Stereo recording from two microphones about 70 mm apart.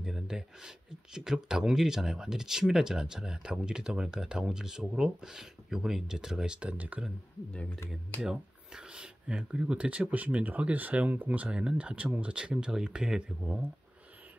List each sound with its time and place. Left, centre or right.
0.0 s speech: centre
8.2 s speech: centre